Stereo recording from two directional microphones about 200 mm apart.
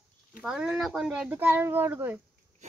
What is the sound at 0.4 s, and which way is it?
Speech, centre (ahead or behind).